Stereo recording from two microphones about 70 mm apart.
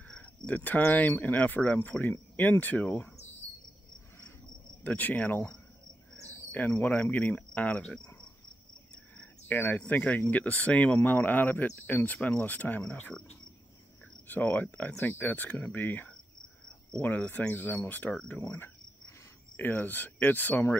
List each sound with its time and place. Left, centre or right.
0.2 s speech: left
4.8 s speech: left
6.2 s cricket: left
7.0 s speech: left
9.5 s speech: left
14.2 s speech: left